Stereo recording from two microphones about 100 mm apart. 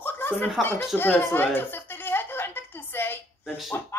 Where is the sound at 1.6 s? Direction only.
20° left (ahead or behind).